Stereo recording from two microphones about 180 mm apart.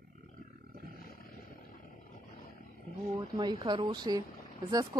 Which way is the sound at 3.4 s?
25° right (ahead or behind).